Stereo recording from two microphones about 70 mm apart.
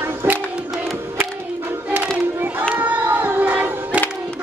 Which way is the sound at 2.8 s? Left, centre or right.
Right.